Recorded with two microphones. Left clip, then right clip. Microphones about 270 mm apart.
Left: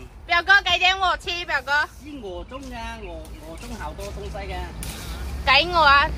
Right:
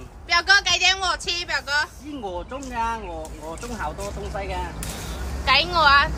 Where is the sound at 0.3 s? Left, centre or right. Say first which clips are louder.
Left 1 dB; centre.